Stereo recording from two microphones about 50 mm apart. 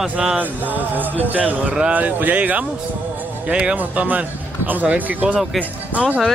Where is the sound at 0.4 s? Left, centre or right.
Right.